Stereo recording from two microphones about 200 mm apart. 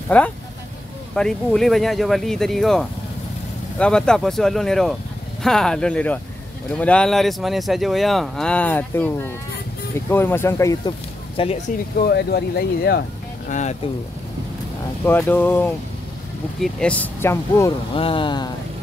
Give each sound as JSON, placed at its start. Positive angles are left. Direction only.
{"t": 0.1, "sound": "speech", "side_deg": 5}
{"t": 11.4, "sound": "speech", "side_deg": 25}
{"t": 12.0, "sound": "speech", "side_deg": 55}
{"t": 13.5, "sound": "speech", "side_deg": 35}
{"t": 15.0, "sound": "speech", "side_deg": 10}
{"t": 17.9, "sound": "speech", "side_deg": 25}